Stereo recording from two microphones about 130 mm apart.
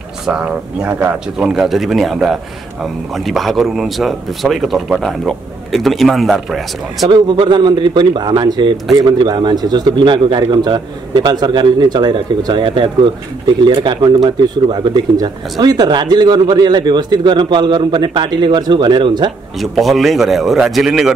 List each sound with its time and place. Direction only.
0.3 s speech: 5° right (ahead or behind)
7.1 s speech: 35° right (ahead or behind)
19.6 s speech: centre (ahead or behind)